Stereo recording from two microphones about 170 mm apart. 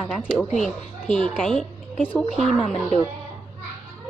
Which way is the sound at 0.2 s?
Centre (ahead or behind).